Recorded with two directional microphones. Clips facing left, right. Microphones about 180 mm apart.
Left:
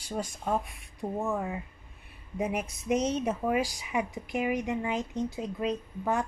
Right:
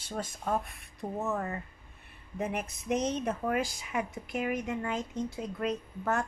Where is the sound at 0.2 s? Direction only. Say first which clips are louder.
Left 1 dB; 5° left (ahead or behind).